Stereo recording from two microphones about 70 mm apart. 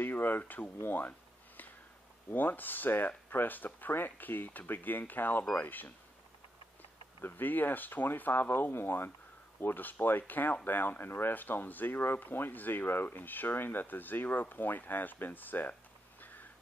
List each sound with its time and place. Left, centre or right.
0.0 s speech: left
2.3 s speech: left
7.2 s speech: left